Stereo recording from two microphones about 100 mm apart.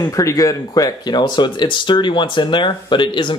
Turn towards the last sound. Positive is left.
turn(degrees=55)  # may be behind; listen again after turning